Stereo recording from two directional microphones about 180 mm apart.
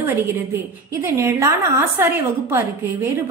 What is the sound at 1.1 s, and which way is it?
A woman's voice, 15° right (ahead or behind).